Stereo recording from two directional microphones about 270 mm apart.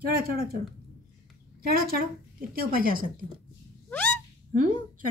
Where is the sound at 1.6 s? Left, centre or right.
Right.